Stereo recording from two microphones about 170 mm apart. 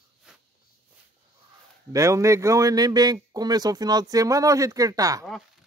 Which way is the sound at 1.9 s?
20° right (ahead or behind).